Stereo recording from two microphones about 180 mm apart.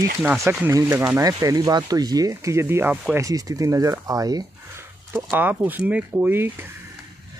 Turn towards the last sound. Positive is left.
turn(degrees=-10)  # may be behind; listen again after turning